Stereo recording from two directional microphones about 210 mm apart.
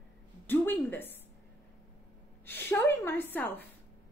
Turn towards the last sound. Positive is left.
turn(degrees=10)  # may be behind; listen again after turning